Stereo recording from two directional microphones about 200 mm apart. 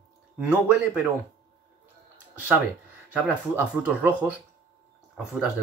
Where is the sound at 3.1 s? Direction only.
10° right (ahead or behind).